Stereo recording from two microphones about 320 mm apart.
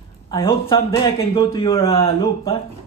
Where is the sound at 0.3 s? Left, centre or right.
Centre.